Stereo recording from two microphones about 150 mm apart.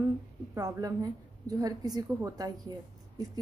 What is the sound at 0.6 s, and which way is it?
A woman's voice, 25° right (ahead or behind).